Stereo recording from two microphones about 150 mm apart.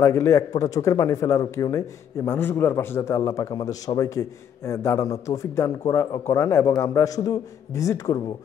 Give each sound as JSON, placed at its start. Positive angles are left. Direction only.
{"t": 0.0, "sound": "speech", "side_deg": 20}